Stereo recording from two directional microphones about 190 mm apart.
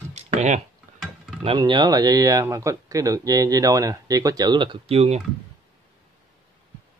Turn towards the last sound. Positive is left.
turn(degrees=-35)  # may be behind; listen again after turning